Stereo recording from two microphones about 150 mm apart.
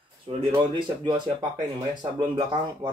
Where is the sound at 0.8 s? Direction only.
30° right (ahead or behind).